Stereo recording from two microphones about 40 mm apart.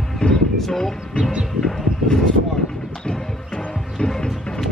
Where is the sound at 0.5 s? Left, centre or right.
Centre.